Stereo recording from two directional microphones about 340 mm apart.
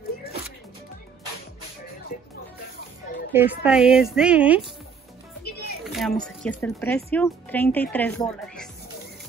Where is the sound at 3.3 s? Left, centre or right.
Centre.